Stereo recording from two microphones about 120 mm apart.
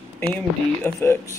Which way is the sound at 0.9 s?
25° left (ahead or behind).